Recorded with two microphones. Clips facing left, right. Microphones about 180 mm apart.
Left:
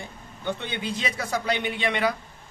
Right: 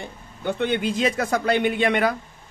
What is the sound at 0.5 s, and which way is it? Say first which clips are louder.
A man's voice: right 9 dB; 50° right (ahead or behind).